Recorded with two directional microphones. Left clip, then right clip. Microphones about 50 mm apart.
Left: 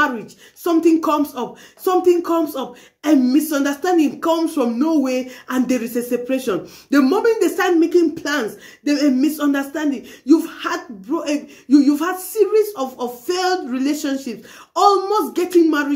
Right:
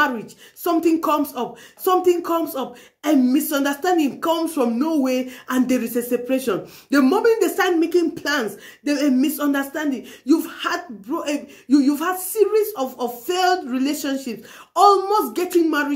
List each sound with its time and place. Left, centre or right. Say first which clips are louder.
0.7 s speech: left 3 dB; right
3.4 s speech: left 1 dB; right
10.2 s speech: left 4 dB; right
10.5 s speech: even; right